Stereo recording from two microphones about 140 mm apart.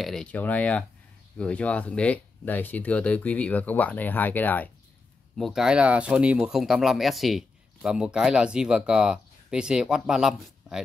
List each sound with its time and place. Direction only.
0.0 s speech: 5° left (ahead or behind)
5.4 s speech: 5° right (ahead or behind)